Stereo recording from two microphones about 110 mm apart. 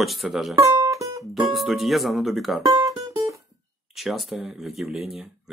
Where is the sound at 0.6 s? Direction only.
30° right (ahead or behind).